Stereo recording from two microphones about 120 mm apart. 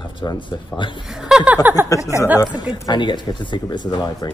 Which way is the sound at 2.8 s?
40° left (ahead or behind).